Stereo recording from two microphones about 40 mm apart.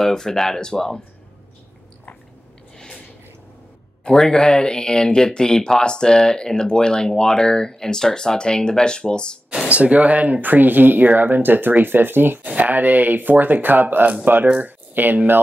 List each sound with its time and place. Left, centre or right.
0.0 s speech: centre
4.3 s speech: left
9.7 s speech: right
10.4 s speech: right
12.4 s speech: right
14.6 s a sound: right